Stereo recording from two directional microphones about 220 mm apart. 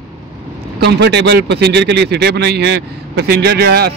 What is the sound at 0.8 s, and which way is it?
Speech, 50° right (ahead or behind).